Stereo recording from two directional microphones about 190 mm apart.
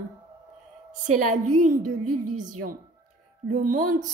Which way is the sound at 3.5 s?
45° right (ahead or behind).